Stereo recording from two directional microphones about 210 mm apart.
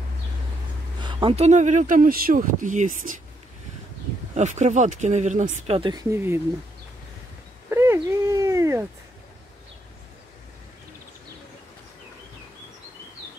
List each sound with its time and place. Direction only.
1.0 s speech: 25° right (ahead or behind)
4.4 s speech: 35° right (ahead or behind); by 6.4 s 10° right (ahead or behind)
7.7 s a sound: 10° right (ahead or behind)